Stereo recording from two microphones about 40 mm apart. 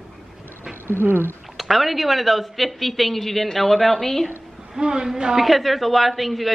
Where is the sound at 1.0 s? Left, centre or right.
Right.